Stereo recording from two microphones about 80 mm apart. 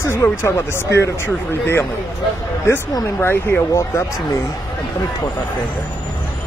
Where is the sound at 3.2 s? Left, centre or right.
Left.